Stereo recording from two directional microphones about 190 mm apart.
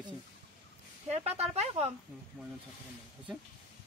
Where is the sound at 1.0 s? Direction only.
35° right (ahead or behind).